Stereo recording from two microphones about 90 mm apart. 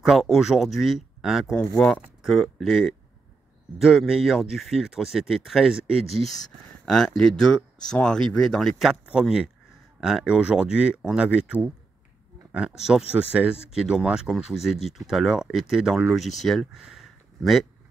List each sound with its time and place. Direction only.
0.0 s speech: 5° right (ahead or behind)
9.9 s speech: 5° right (ahead or behind)